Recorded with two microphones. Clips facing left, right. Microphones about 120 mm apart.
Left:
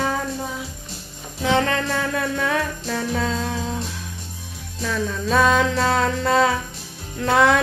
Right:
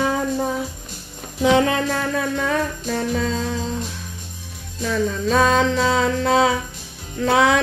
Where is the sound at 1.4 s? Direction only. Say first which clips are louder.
Right 4 dB; 15° right (ahead or behind).